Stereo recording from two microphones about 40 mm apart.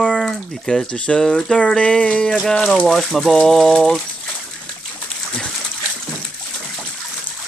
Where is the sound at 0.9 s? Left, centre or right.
Left.